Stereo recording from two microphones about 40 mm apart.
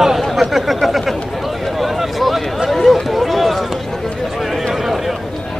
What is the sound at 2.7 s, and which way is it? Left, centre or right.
Run, centre.